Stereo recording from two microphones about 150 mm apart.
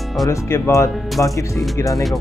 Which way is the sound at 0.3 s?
20° left (ahead or behind).